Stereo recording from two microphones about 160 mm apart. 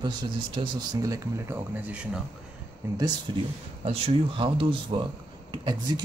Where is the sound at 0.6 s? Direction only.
25° right (ahead or behind); by 2.2 s 10° right (ahead or behind).